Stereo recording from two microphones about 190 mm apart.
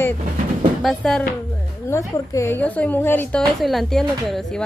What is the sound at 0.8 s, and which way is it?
Speech, centre (ahead or behind).